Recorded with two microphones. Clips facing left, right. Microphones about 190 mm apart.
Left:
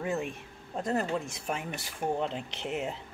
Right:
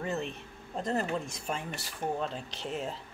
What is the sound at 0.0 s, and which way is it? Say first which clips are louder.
Speech: left 2 dB; 10° left (ahead or behind).